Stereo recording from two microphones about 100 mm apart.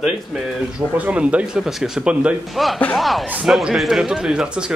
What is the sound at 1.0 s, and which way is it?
A man's voice, 15° right (ahead or behind).